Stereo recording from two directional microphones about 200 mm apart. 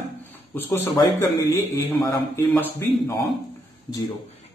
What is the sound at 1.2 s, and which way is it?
A man's voice, 15° left (ahead or behind).